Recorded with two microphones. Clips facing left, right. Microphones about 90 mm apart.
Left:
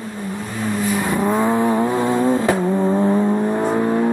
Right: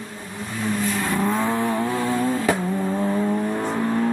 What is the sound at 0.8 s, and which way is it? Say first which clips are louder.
Vehicle: left 5 dB; 15° left (ahead or behind).